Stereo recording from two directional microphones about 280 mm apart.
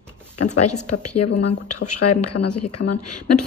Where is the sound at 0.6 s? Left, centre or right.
Left.